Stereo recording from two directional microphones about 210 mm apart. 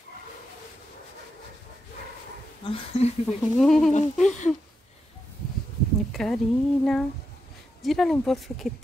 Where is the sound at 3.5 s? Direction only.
Centre (ahead or behind).